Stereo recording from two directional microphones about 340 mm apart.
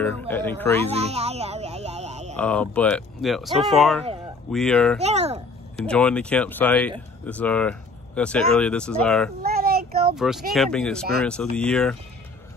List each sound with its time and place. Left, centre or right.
0.3 s speech: centre
0.8 s snake: centre
2.3 s speech: centre
5.0 s a child's voice: centre
5.9 s speech: centre
9.4 s child singing: right
10.1 s speech: centre